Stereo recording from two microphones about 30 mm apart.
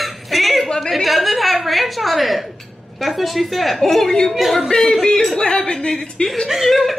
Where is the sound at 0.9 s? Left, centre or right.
Centre.